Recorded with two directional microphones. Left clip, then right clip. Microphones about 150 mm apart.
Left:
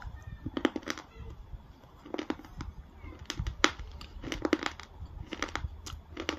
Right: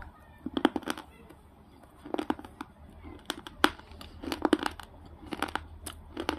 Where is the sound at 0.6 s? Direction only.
40° right (ahead or behind).